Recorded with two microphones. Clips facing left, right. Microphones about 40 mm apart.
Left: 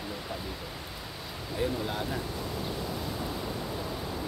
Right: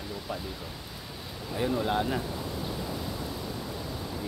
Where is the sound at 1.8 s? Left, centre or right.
Right.